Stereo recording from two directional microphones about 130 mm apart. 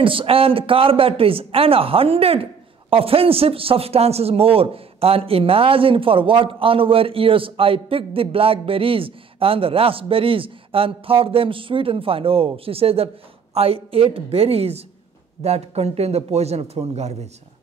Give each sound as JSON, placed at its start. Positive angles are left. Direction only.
{"t": 0.0, "sound": "a man's voice", "side_deg": -45}